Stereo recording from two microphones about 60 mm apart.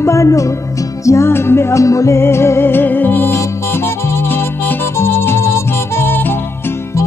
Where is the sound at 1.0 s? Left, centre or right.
Left.